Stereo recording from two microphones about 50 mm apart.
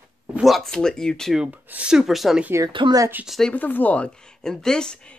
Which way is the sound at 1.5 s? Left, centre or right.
Right.